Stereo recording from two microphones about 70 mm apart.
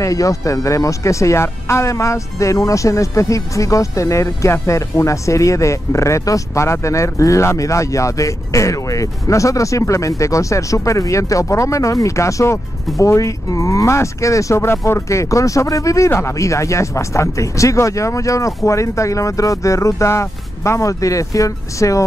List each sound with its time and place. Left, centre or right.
0.0 s speech: left